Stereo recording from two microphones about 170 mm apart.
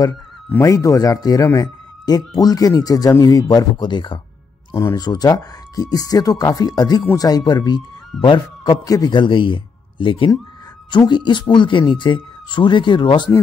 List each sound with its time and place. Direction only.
0.0 s speech: 20° left (ahead or behind)